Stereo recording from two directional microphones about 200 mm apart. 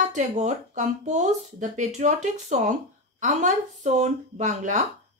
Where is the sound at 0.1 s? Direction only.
35° right (ahead or behind).